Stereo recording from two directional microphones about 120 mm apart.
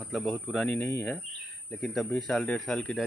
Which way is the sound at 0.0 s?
5° left (ahead or behind).